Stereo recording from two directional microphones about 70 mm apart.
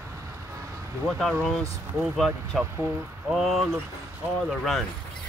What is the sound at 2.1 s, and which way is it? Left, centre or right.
Speech, centre.